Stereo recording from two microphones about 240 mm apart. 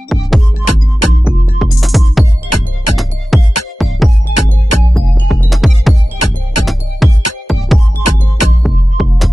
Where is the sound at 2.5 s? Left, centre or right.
Left.